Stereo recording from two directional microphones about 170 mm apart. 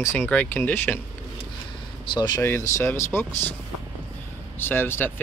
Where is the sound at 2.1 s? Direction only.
25° left (ahead or behind).